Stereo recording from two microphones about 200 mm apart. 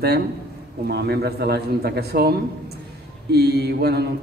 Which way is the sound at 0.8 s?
55° right (ahead or behind).